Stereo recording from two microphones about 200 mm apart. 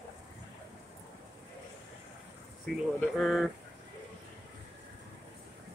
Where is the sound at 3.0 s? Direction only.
Centre (ahead or behind).